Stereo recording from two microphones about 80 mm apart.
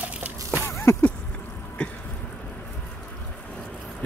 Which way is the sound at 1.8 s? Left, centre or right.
Centre.